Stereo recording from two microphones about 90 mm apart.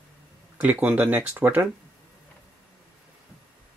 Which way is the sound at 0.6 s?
20° right (ahead or behind).